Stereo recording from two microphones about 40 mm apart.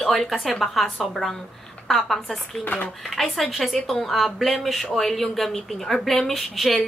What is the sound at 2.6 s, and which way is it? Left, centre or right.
Speech, left.